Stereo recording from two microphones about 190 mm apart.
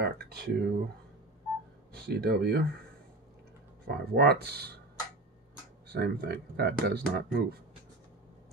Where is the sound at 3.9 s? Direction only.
55° right (ahead or behind).